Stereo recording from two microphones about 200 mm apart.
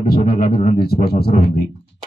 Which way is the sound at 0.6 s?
30° left (ahead or behind).